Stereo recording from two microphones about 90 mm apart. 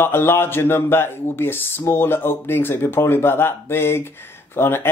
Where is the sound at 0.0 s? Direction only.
25° left (ahead or behind).